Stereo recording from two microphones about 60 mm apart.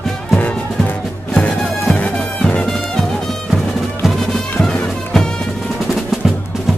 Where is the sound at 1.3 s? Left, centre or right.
Centre.